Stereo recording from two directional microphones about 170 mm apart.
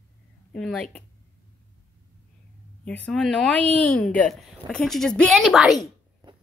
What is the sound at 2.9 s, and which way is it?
A woman's voice, 5° left (ahead or behind).